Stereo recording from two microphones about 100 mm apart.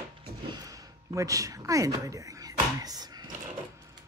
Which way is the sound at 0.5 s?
35° right (ahead or behind).